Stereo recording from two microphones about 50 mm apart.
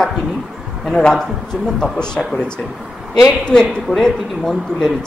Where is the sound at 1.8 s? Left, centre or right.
Centre.